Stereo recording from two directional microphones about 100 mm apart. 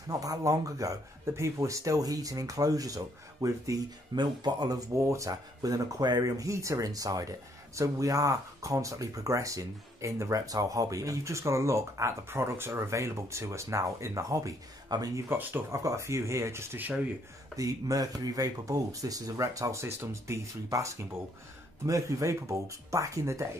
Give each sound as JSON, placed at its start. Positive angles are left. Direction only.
{"t": 0.1, "sound": "speech", "side_deg": -35}
{"t": 4.2, "sound": "speech", "side_deg": -45}
{"t": 15.2, "sound": "speech", "side_deg": -20}
{"t": 17.6, "sound": "speech", "side_deg": -35}